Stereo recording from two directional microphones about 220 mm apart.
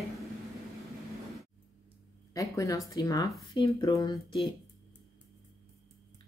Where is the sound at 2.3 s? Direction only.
15° left (ahead or behind).